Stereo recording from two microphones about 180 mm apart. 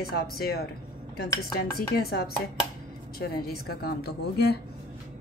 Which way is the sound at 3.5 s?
60° left (ahead or behind).